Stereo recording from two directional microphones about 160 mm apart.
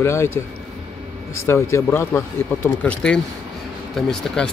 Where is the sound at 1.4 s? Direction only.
15° left (ahead or behind).